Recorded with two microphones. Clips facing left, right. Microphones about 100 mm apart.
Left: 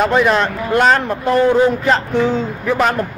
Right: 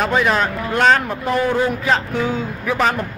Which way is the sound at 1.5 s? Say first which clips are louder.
Left 6 dB; 20° left (ahead or behind).